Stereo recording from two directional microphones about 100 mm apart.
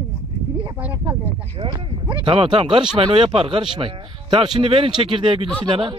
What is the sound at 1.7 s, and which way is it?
Speech, 60° right (ahead or behind).